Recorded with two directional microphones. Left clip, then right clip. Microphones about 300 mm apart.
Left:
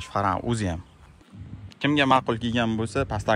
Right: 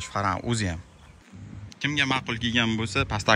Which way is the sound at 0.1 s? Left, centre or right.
Centre.